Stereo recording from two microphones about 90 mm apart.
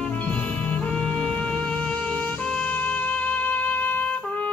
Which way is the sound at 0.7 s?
15° left (ahead or behind).